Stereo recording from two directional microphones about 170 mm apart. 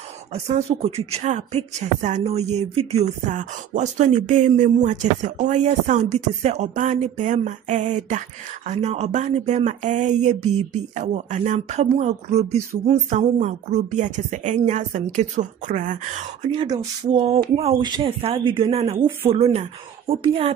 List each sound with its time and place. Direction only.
0.3 s a woman's voice: 40° right (ahead or behind)
16.4 s speech: 25° right (ahead or behind)